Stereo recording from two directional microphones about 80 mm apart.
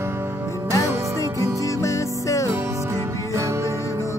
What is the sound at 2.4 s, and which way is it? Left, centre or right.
Music, right.